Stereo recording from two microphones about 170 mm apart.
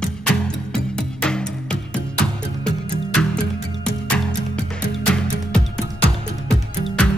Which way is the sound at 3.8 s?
5° left (ahead or behind).